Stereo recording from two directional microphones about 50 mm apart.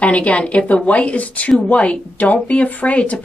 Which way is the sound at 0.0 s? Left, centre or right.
Left.